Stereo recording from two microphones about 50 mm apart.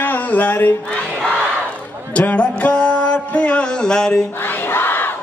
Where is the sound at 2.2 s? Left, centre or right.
Left; by 4.2 s centre.